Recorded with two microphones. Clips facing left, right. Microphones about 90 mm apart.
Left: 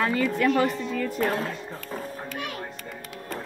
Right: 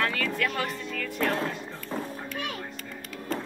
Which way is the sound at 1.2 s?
5° left (ahead or behind).